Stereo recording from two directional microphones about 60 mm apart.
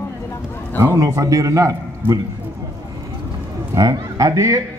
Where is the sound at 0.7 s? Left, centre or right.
Right.